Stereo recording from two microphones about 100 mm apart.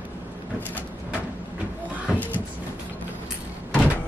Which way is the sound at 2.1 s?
15° left (ahead or behind).